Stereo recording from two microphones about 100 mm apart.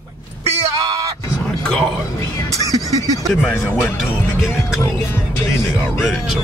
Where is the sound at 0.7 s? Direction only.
40° right (ahead or behind).